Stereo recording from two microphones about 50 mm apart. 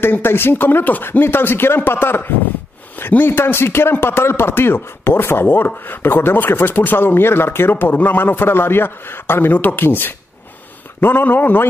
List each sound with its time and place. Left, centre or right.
0.0 s a man's voice: left
7.7 s a man's voice: left